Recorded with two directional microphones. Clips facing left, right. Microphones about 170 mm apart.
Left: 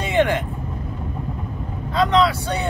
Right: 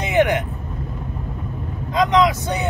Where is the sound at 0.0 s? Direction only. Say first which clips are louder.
Right 1 dB; 15° right (ahead or behind).